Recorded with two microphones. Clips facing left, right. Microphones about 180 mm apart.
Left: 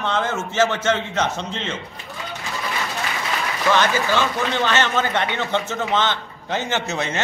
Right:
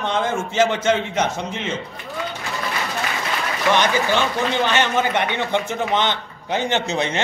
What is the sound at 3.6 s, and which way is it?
A man's voice, 15° right (ahead or behind).